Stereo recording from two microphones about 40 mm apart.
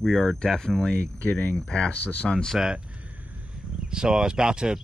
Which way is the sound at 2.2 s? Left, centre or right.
Centre.